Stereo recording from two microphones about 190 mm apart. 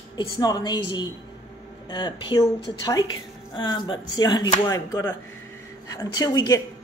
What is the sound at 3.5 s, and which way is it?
A woman's voice, 25° left (ahead or behind).